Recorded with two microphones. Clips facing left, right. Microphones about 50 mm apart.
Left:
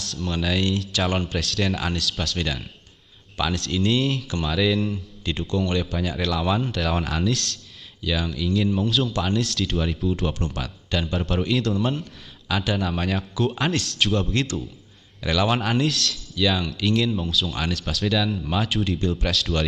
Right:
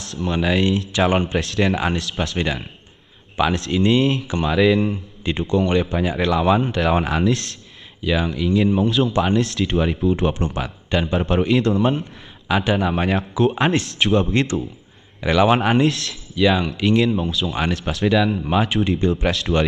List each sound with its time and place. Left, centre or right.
0.0 s speech: centre
8.6 s a man's voice: centre
9.1 s speech: right
11.7 s a man's voice: centre
12.0 s speech: right
17.5 s speech: right